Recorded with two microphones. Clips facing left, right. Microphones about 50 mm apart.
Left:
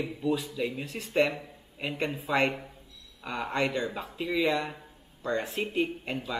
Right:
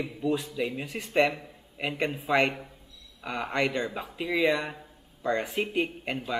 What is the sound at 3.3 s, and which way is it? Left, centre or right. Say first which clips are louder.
Speech: right 1 dB; right.